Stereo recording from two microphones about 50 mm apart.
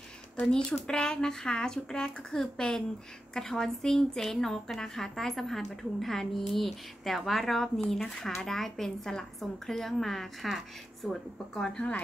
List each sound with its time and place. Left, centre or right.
0.4 s a woman's voice: centre